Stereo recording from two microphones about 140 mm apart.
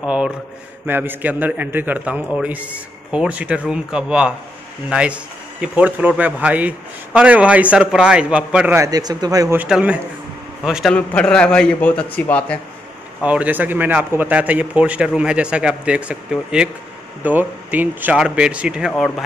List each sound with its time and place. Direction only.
0.0 s speech: 10° right (ahead or behind)
8.7 s speech: 25° right (ahead or behind)
9.6 s a man's voice: 10° right (ahead or behind); by 12.5 s 10° left (ahead or behind)
13.2 s speech: 10° right (ahead or behind)